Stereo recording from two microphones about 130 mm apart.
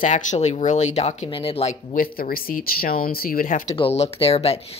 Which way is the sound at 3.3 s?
85° left.